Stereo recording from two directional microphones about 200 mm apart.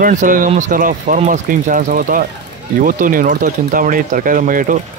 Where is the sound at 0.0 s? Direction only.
40° right (ahead or behind).